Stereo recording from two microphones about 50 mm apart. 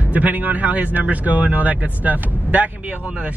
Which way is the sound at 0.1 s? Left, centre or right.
Right.